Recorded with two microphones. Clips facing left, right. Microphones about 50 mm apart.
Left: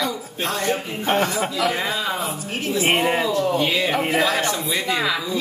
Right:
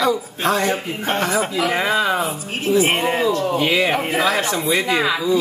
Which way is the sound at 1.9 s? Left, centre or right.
Right.